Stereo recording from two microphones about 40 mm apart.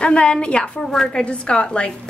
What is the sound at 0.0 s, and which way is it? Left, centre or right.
A woman's voice, left.